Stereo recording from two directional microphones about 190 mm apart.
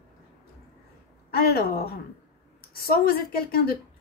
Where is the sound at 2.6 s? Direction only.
55° left (ahead or behind).